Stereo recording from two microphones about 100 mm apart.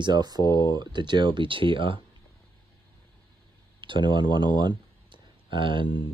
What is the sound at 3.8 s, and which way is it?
Speech, 55° right (ahead or behind).